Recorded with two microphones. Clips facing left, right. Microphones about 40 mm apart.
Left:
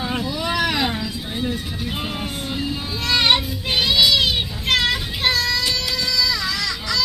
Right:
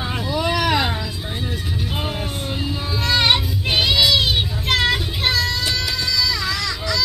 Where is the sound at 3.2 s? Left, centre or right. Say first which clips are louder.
Left 1 dB; centre.